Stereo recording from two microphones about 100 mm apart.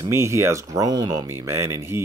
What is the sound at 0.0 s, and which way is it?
Speech, 30° right (ahead or behind).